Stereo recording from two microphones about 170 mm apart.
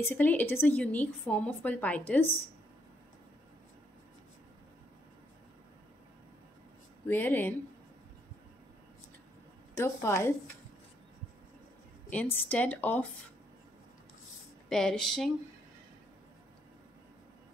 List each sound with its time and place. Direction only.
0.0 s a woman's voice: 10° left (ahead or behind)
7.1 s a woman's voice: 10° left (ahead or behind)
9.8 s a woman's voice: 15° left (ahead or behind)
12.1 s a woman's voice: 10° left (ahead or behind)
14.7 s speech: centre (ahead or behind)